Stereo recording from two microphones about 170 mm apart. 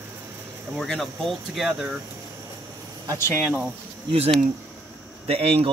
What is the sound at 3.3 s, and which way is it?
Speech, centre (ahead or behind).